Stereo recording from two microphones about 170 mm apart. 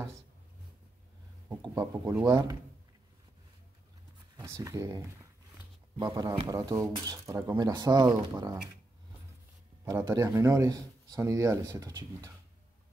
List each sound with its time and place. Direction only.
1.6 s speech: 20° right (ahead or behind)
4.4 s speech: 15° right (ahead or behind)
9.8 s speech: 15° right (ahead or behind)